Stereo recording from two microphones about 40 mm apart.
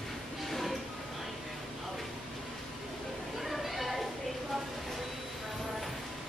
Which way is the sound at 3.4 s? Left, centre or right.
Centre.